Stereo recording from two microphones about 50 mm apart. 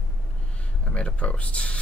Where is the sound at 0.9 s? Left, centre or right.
Left.